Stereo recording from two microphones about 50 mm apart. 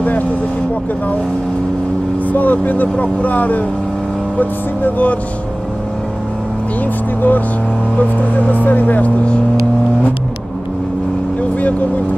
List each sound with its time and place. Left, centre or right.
2.2 s speech: left
7.2 s speech: left